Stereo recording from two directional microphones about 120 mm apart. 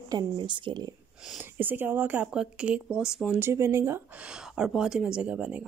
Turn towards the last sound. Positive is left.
turn(degrees=-10)  # may be behind; listen again after turning